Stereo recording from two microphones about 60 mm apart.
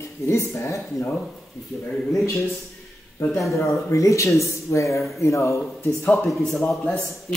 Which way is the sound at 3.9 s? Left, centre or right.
Left.